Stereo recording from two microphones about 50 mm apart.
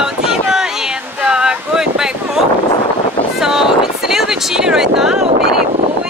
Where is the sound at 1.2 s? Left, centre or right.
Centre.